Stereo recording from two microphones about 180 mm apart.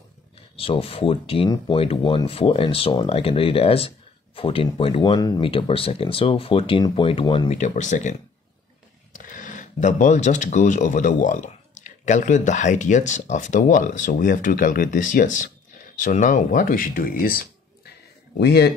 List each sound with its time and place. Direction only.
0.6 s speech: 30° left (ahead or behind)
7.5 s speech: 40° left (ahead or behind)
18.4 s speech: 65° left (ahead or behind)